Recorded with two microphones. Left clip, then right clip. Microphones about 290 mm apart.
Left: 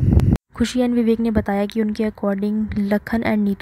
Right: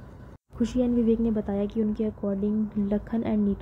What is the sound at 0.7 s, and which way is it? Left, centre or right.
Speech, left.